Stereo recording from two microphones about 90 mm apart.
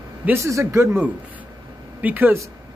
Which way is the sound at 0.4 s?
35° right (ahead or behind).